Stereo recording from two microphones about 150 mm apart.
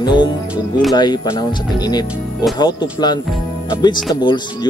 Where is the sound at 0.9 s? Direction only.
30° left (ahead or behind).